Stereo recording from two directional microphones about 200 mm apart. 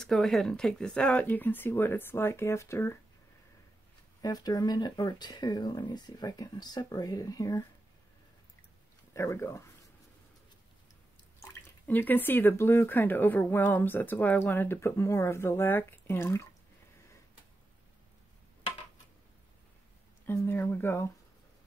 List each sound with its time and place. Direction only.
0.0 s speech: centre (ahead or behind)
4.2 s speech: 20° left (ahead or behind)
9.1 s speech: 15° left (ahead or behind)
11.4 s speech: 10° left (ahead or behind)
20.2 s speech: 10° left (ahead or behind)